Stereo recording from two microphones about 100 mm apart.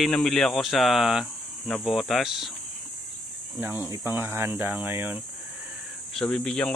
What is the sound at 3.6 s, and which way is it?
Speech, 20° right (ahead or behind).